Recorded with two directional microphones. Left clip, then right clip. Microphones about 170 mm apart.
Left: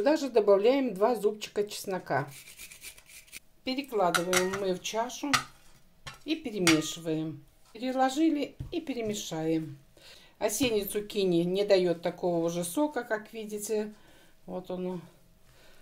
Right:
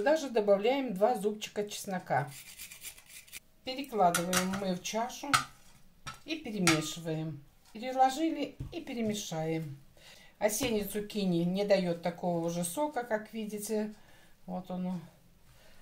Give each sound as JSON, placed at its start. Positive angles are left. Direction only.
{"t": 0.0, "sound": "speech", "side_deg": 40}
{"t": 3.6, "sound": "a woman's voice", "side_deg": 40}